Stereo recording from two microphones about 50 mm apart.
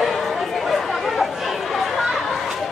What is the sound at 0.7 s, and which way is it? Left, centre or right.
Chatter, centre.